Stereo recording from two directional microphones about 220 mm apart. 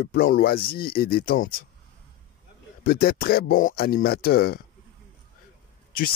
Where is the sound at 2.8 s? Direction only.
40° left (ahead or behind).